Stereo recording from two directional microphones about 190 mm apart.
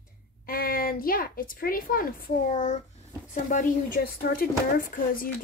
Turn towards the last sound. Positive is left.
turn(degrees=50)  # may be behind; listen again after turning